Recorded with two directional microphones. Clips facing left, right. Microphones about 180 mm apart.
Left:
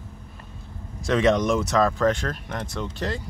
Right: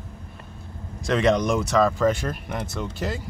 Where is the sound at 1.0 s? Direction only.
Centre (ahead or behind).